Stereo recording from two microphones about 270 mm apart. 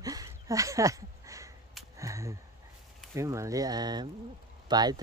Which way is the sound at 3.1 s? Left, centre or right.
Centre.